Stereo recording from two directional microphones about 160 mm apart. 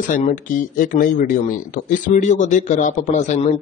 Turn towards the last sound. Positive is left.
turn(degrees=45)  # may be behind; listen again after turning